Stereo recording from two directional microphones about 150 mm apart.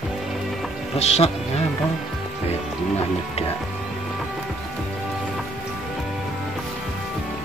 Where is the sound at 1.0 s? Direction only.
45° left (ahead or behind).